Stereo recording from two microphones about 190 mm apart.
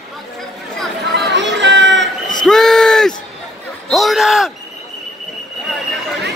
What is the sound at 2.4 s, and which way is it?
Speech, centre (ahead or behind).